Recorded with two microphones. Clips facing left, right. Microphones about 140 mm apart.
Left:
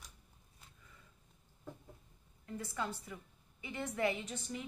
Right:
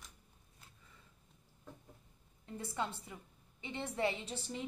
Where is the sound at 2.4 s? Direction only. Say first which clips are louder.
Right 1 dB; 25° right (ahead or behind).